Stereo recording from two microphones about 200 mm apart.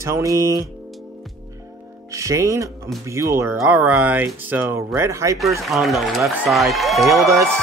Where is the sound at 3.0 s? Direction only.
15° right (ahead or behind).